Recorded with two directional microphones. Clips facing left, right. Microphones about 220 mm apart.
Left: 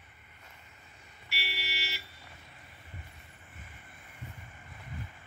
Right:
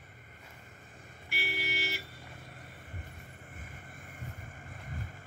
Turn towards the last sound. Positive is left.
turn(degrees=-45)  # may be behind; listen again after turning